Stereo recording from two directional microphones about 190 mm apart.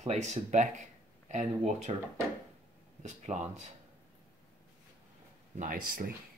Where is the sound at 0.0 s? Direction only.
35° right (ahead or behind).